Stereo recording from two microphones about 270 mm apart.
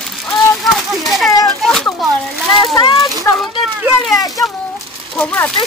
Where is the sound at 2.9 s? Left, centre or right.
Centre.